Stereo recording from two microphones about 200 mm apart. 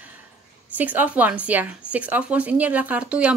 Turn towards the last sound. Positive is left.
turn(degrees=-5)  # may be behind; listen again after turning